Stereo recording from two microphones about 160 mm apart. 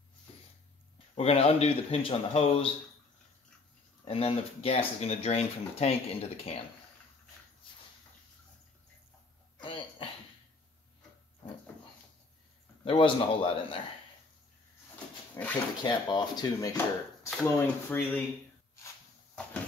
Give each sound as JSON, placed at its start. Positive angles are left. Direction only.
{"t": 1.1, "sound": "speech", "side_deg": 40}
{"t": 4.1, "sound": "speech", "side_deg": 35}
{"t": 9.6, "sound": "throat clearing", "side_deg": 30}
{"t": 12.8, "sound": "speech", "side_deg": 35}
{"t": 15.4, "sound": "speech", "side_deg": 20}